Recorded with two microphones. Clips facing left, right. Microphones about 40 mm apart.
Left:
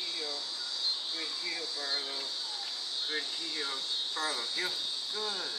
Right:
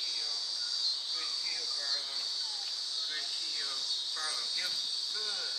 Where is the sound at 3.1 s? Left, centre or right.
Left.